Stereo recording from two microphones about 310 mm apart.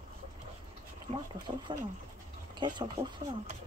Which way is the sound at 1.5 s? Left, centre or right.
Centre.